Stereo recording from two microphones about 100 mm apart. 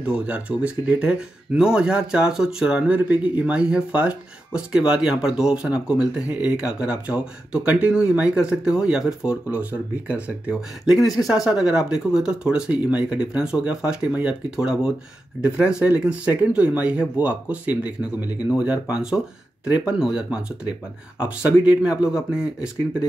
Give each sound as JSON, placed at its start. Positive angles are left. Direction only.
{"t": 0.0, "sound": "speech", "side_deg": -15}
{"t": 10.9, "sound": "speech", "side_deg": 0}